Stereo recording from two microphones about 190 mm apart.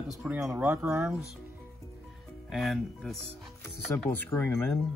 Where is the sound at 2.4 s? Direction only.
Centre (ahead or behind).